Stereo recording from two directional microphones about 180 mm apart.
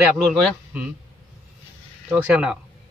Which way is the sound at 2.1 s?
5° right (ahead or behind).